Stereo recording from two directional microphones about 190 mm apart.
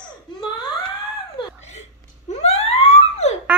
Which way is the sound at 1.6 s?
35° left (ahead or behind).